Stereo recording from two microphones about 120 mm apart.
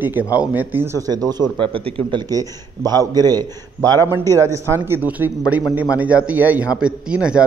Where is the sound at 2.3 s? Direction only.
30° right (ahead or behind); by 7.4 s 10° right (ahead or behind).